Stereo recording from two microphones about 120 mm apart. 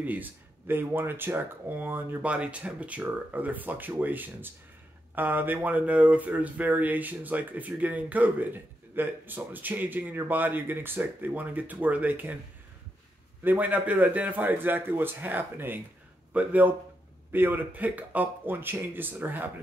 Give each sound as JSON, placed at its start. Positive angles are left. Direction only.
{"t": 0.0, "sound": "speech", "side_deg": -15}
{"t": 13.4, "sound": "speech", "side_deg": -15}